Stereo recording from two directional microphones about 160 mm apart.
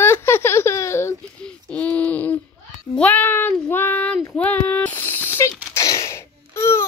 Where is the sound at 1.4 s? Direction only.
5° left (ahead or behind).